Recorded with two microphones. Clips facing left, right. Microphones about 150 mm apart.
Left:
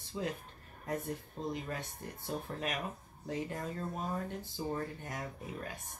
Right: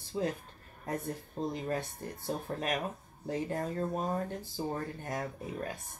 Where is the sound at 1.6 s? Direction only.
35° right (ahead or behind).